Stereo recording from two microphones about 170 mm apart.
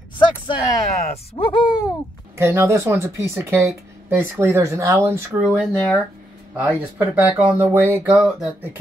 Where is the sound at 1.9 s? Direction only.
15° right (ahead or behind).